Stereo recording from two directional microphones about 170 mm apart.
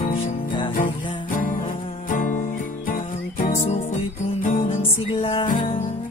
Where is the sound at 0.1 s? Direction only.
30° left (ahead or behind).